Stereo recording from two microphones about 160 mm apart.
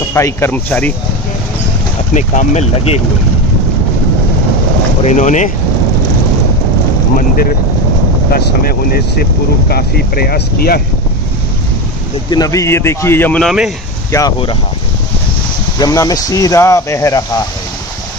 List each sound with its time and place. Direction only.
0.1 s speech: 15° left (ahead or behind)
2.1 s speech: 45° left (ahead or behind)
5.0 s speech: 50° left (ahead or behind)
8.3 s speech: 70° left (ahead or behind)
12.3 s speech: 20° left (ahead or behind); by 13.7 s centre (ahead or behind)
15.8 s speech: 20° left (ahead or behind)